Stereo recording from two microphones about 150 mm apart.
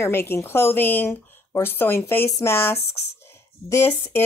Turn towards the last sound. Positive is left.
turn(degrees=15)  # may be behind; listen again after turning